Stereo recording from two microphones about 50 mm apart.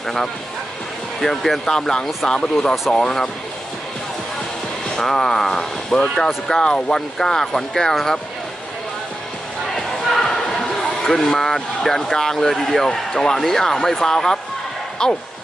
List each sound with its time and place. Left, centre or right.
0.0 s speech: centre
4.8 s speech: centre
9.8 s a sound: centre
12.2 s speech: centre